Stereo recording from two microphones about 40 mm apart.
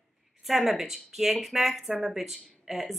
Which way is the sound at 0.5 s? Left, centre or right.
Centre.